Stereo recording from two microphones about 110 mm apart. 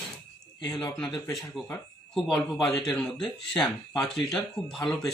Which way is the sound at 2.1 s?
5° left (ahead or behind).